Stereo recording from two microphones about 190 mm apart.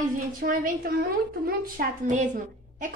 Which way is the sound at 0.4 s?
50° right (ahead or behind).